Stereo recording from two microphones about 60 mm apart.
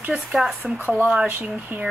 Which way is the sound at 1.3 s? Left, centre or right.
Right.